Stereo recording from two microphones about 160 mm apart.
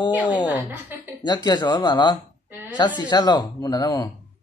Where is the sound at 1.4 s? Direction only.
25° left (ahead or behind).